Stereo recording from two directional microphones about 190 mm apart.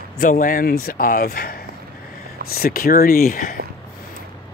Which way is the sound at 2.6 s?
50° left (ahead or behind).